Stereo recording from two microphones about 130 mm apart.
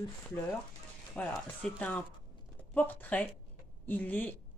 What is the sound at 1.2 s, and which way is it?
A woman's voice, 10° left (ahead or behind).